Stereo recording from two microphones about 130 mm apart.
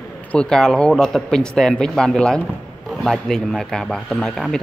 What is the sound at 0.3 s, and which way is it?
Speech, 5° left (ahead or behind).